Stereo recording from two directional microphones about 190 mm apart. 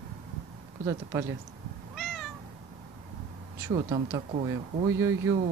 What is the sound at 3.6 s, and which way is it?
Speech, 15° right (ahead or behind).